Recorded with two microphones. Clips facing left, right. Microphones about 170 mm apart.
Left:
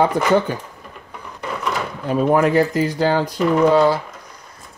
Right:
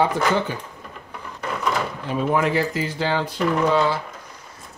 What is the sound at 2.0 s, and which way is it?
Speech, 45° left (ahead or behind).